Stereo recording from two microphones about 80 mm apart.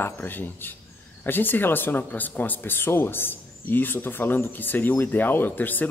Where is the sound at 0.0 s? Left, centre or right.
Left.